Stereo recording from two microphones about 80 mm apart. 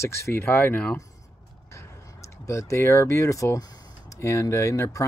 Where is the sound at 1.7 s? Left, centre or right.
Left.